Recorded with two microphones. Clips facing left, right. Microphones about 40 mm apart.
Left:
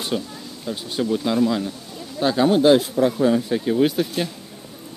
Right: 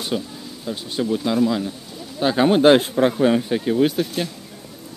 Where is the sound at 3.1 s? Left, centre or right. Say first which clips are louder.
Right 1 dB; right.